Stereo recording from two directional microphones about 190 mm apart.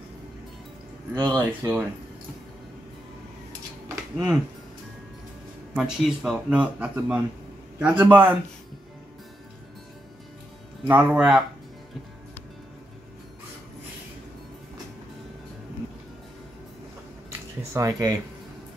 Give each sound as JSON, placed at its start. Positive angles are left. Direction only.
{"t": 1.1, "sound": "speech", "side_deg": -10}
{"t": 3.9, "sound": "a sound", "side_deg": -5}
{"t": 5.8, "sound": "speech", "side_deg": -5}
{"t": 10.8, "sound": "speech", "side_deg": -10}
{"t": 17.7, "sound": "speech", "side_deg": -20}